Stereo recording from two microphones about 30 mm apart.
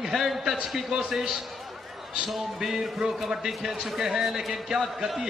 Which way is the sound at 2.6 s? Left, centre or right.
Centre.